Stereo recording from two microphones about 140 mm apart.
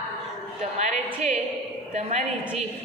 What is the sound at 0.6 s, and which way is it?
A woman's voice, 55° right (ahead or behind).